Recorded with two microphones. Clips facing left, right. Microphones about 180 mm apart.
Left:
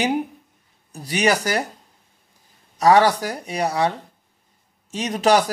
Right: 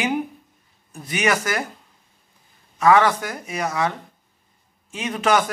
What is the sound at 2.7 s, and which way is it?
Speech, 35° left (ahead or behind).